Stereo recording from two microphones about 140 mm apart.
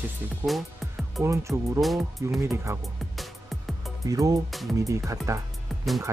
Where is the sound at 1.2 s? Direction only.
20° right (ahead or behind).